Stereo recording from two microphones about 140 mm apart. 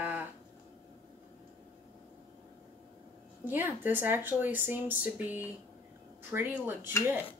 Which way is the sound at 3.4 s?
15° right (ahead or behind).